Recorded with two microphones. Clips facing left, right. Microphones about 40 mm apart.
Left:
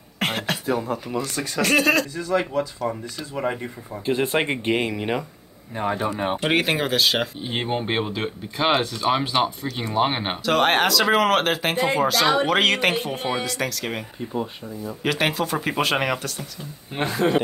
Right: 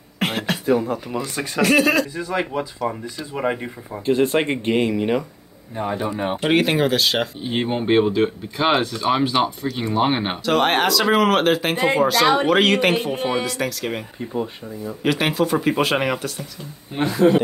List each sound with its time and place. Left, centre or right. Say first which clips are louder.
0.2 s a sound: right 2 dB; centre
1.2 s speech: right 3 dB; centre
1.7 s speech: right 2 dB; centre
2.1 s speech: left 1 dB; centre
4.0 s speech: right 4 dB; centre
5.8 s speech: even; left
6.4 s speech: right 5 dB; centre
16.9 s speech: right 5 dB; left